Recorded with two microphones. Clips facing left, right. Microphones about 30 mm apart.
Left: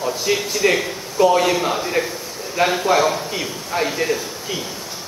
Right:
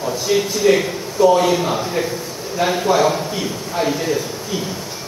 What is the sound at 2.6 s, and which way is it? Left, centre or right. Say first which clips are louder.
Speech: left 1 dB; left.